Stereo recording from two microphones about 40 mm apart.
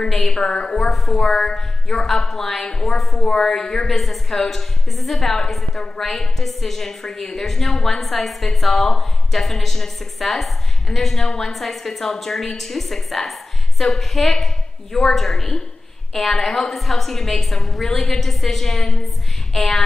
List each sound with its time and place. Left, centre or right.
0.1 s a woman's voice: centre
0.4 s a woman's voice: centre
19.5 s a sound: centre